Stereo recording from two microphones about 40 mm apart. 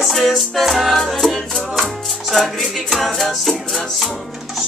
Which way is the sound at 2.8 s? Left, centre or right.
Centre.